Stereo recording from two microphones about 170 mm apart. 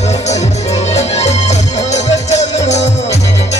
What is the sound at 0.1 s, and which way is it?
Music, 40° left (ahead or behind).